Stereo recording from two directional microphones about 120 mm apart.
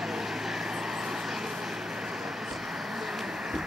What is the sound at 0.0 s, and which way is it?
Vehicle, centre (ahead or behind).